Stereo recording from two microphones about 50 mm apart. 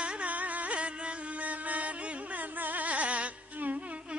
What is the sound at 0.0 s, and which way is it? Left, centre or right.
Music, right.